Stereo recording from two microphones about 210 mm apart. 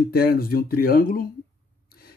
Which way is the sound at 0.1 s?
45° left (ahead or behind).